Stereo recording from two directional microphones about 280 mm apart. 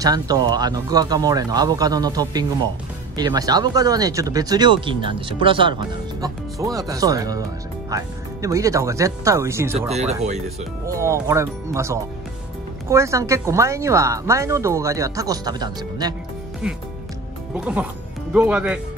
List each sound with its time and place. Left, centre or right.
0.0 s speech: centre
9.8 s speech: right
10.9 s speech: centre
16.6 s speech: centre
18.3 s speech: centre